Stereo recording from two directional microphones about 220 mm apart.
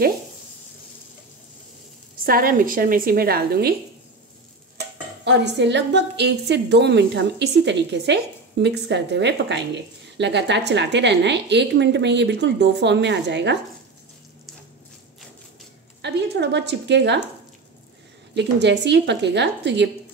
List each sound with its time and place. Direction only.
2.2 s a woman's voice: 40° right (ahead or behind)
5.2 s a woman's voice: 50° right (ahead or behind)
16.0 s a woman's voice: 50° right (ahead or behind)
18.3 s a woman's voice: 50° right (ahead or behind)